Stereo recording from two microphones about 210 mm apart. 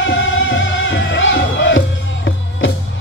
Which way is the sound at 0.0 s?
65° left (ahead or behind).